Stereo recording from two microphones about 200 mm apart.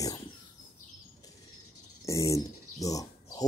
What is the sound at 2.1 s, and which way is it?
Bird, 15° left (ahead or behind).